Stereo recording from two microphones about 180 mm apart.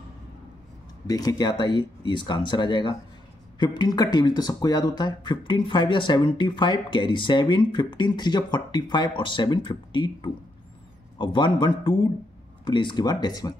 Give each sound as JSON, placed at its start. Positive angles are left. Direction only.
{"t": 1.0, "sound": "speech", "side_deg": 20}